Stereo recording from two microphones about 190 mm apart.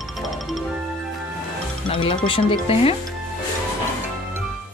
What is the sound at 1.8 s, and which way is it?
Speech, 25° left (ahead or behind).